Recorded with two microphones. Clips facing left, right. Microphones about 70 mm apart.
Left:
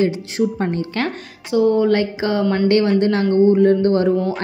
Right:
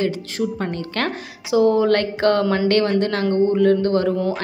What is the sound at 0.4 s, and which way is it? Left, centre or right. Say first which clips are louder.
Speech: left 4 dB; centre.